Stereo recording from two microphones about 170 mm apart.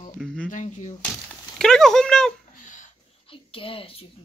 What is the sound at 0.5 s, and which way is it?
Speech, 45° left (ahead or behind).